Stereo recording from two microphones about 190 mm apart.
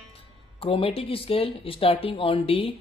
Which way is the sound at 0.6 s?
30° left (ahead or behind).